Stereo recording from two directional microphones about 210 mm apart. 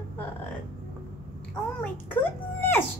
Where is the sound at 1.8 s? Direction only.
10° left (ahead or behind).